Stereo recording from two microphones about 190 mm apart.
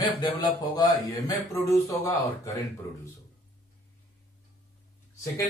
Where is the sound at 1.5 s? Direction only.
15° left (ahead or behind).